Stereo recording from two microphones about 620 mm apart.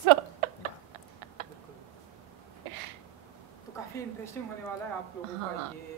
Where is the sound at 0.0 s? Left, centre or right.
Right.